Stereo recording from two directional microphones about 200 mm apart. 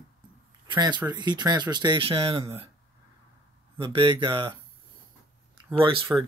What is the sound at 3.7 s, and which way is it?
Speech, 25° right (ahead or behind).